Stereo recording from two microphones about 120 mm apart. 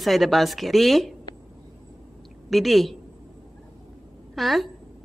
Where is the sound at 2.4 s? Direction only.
Centre (ahead or behind).